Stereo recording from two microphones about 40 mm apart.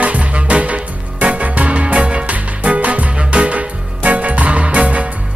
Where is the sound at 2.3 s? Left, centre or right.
Right.